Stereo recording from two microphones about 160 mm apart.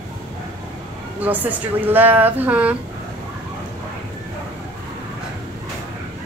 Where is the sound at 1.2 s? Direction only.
10° right (ahead or behind).